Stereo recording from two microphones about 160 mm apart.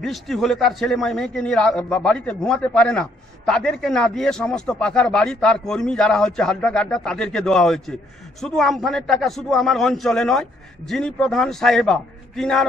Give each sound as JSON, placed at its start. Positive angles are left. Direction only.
{"t": 0.0, "sound": "a man's voice", "side_deg": 0}